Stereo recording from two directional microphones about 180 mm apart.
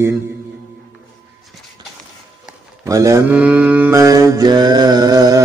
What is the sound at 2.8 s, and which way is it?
Mantra, 15° right (ahead or behind).